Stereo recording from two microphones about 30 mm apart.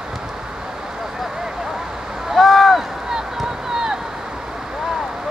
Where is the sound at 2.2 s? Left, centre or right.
Centre.